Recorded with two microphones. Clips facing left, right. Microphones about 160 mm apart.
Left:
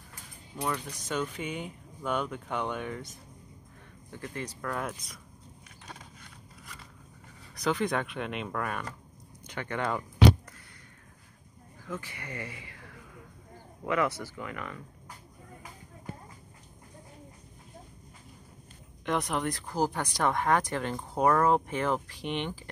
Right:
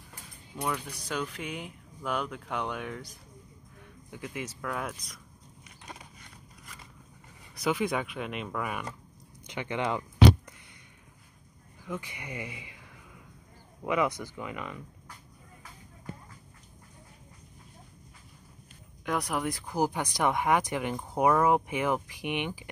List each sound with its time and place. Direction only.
0.6 s speech: centre (ahead or behind)
4.1 s speech: 10° right (ahead or behind)
7.6 s speech: 5° right (ahead or behind)
11.8 s speech: 15° right (ahead or behind)
19.0 s speech: centre (ahead or behind)